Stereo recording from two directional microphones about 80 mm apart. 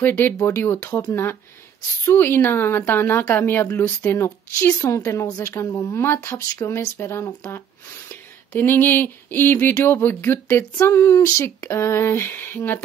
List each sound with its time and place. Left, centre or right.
0.5 s a woman's voice: left
10.9 s a woman's voice: left